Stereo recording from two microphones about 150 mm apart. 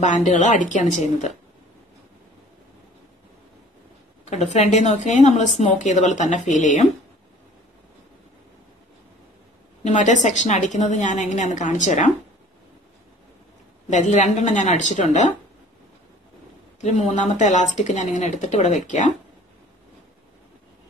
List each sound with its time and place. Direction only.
0.0 s a woman's voice: 55° left (ahead or behind)
4.2 s speech: 50° left (ahead or behind)
9.8 s a woman's voice: 55° left (ahead or behind)
13.8 s speech: 50° left (ahead or behind)
16.8 s a woman's voice: 50° left (ahead or behind)